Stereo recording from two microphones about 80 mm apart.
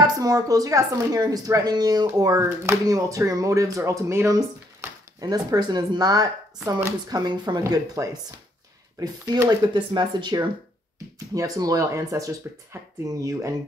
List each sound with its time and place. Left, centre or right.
0.0 s speech: right
4.3 s speech: right
9.8 s speech: right
11.3 s speech: right